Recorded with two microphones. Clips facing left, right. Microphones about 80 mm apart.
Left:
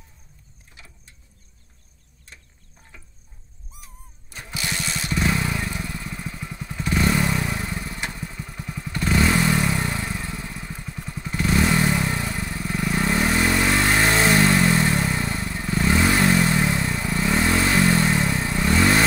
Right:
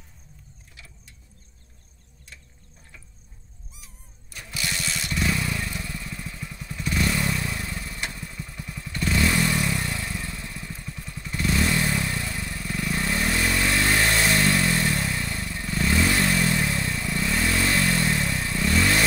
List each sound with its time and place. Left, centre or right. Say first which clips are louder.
0.7 s vehicle: left 2 dB; left
4.3 s vehicle: left 2 dB; left
7.7 s vehicle: left 3 dB; left
8.5 s motorcycle: left 3 dB; left
11.4 s vehicle: left 4 dB; left